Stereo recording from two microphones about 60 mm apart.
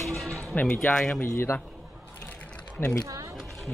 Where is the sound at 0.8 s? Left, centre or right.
Centre.